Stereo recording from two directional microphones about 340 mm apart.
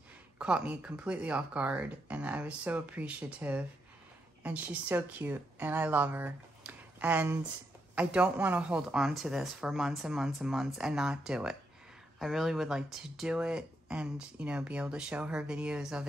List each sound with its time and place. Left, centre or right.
0.4 s speech: centre